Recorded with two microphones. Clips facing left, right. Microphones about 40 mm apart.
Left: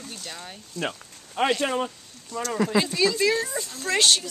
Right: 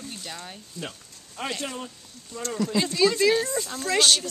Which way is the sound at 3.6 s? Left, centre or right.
Centre.